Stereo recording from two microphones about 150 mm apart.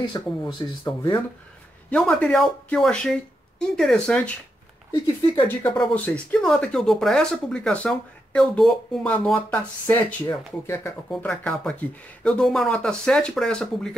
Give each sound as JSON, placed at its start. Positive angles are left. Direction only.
{"t": 0.0, "sound": "speech", "side_deg": 30}
{"t": 1.9, "sound": "speech", "side_deg": 5}
{"t": 5.0, "sound": "speech", "side_deg": 35}
{"t": 5.6, "sound": "speech", "side_deg": 10}